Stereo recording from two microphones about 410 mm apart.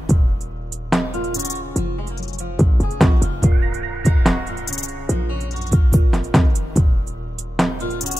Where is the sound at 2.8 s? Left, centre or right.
Centre.